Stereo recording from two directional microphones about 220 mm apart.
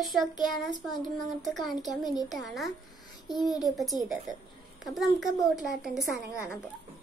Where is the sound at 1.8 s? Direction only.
15° left (ahead or behind).